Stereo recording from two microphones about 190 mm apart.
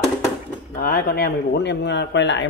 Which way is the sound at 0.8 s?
50° left (ahead or behind).